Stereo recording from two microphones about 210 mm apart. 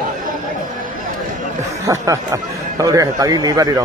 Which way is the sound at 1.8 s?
15° right (ahead or behind).